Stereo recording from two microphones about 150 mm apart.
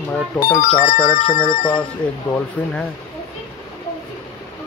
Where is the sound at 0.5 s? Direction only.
65° left (ahead or behind).